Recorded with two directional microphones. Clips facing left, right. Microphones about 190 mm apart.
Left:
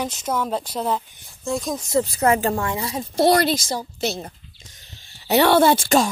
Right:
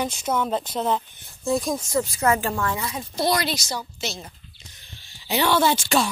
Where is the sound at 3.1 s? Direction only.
75° left (ahead or behind).